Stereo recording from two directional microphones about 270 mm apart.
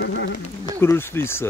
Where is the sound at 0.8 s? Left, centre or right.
Centre.